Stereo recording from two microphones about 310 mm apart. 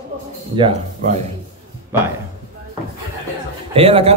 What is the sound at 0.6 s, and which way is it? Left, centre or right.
Speech, centre.